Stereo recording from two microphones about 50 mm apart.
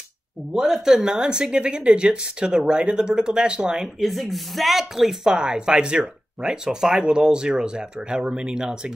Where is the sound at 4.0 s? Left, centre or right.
Centre.